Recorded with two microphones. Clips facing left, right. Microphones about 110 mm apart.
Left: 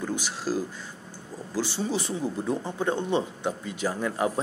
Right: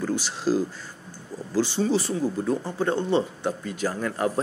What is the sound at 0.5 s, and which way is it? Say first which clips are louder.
Speech: right 6 dB; 5° left (ahead or behind).